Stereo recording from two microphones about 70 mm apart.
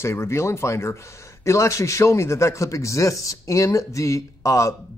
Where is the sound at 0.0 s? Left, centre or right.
Left.